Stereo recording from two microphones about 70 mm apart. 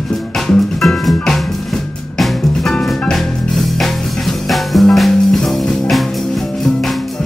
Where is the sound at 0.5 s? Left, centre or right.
Centre.